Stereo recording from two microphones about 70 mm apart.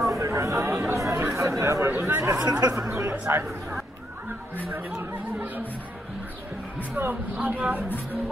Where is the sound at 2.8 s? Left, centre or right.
Right.